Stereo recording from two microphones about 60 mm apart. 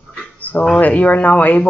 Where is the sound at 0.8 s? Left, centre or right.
Left.